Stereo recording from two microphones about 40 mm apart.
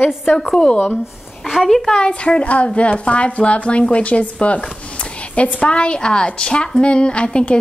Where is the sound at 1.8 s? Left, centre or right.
Left.